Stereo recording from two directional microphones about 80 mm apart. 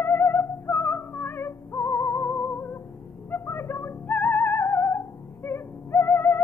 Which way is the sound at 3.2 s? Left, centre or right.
Left.